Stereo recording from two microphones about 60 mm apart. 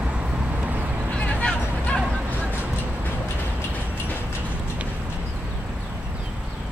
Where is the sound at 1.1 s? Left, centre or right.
Left.